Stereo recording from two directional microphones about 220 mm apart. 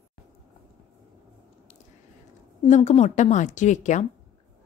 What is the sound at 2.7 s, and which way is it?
A woman's voice, 30° left (ahead or behind).